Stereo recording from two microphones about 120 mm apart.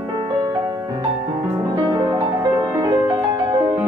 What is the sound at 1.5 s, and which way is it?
Music, 35° right (ahead or behind).